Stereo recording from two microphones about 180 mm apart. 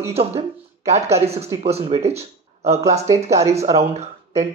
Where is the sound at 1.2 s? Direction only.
35° right (ahead or behind).